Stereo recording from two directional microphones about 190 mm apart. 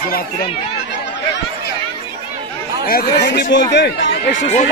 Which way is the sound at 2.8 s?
55° left (ahead or behind).